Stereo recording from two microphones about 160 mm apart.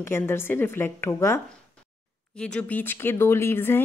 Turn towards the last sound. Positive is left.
turn(degrees=15)  # may be behind; listen again after turning